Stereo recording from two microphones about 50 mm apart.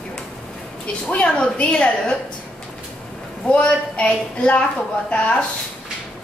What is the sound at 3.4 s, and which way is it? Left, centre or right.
A woman's voice, left.